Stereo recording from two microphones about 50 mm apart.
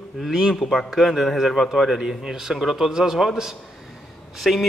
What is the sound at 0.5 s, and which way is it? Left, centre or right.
A man's voice, centre.